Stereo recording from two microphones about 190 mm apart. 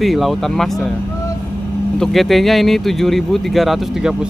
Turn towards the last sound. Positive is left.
turn(degrees=0)  # may be behind; listen again after turning